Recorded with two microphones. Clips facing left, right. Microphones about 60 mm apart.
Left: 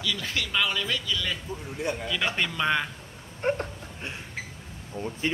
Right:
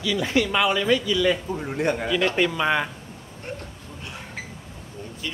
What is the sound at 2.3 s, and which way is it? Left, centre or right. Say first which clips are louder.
Speech: right 4 dB; centre.